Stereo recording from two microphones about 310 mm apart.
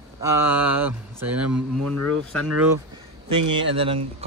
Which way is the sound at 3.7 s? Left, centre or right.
Centre.